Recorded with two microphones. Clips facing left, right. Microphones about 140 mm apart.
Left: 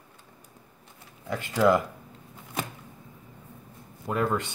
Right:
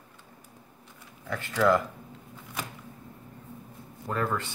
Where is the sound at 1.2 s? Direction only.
15° left (ahead or behind).